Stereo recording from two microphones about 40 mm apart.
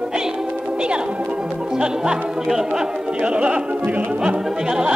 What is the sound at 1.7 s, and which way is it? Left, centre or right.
Speech, centre.